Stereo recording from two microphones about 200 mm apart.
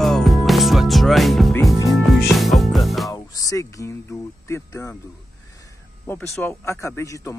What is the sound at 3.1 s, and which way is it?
Speech, 15° left (ahead or behind).